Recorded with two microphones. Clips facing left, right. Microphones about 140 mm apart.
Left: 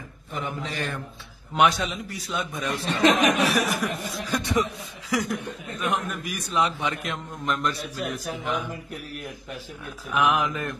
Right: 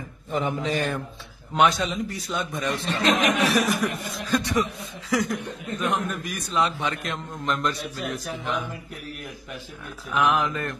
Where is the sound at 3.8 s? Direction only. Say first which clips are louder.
Right 2 dB; 10° left (ahead or behind).